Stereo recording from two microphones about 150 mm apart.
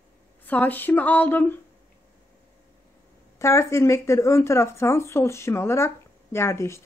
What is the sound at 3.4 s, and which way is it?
Speech, 20° left (ahead or behind).